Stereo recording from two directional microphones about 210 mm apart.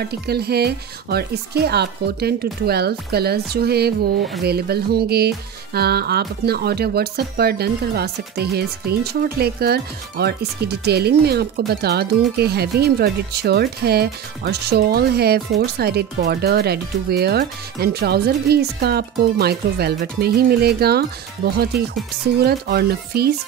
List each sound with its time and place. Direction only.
0.0 s speech: 50° right (ahead or behind)
22.4 s speech: 50° right (ahead or behind)